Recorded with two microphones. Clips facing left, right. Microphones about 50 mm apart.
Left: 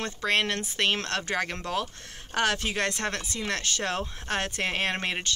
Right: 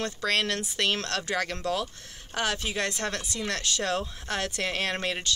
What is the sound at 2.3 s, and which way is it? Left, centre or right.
Speech, left.